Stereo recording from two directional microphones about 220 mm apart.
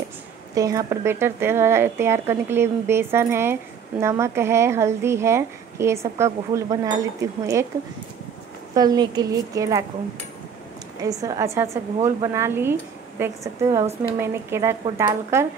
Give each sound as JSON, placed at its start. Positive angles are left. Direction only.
{"t": 0.6, "sound": "a woman's voice", "side_deg": -15}
{"t": 8.7, "sound": "a woman's voice", "side_deg": -20}
{"t": 11.0, "sound": "a woman's voice", "side_deg": -15}